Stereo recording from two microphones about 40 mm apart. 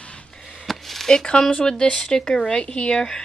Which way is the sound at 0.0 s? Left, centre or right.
Left.